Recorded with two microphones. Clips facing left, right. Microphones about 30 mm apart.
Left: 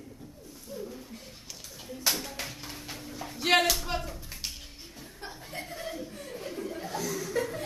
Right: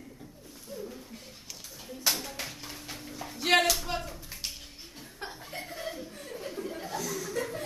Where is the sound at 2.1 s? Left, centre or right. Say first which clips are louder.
Even; centre.